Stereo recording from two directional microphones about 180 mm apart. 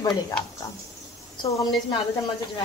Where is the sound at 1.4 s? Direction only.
25° left (ahead or behind).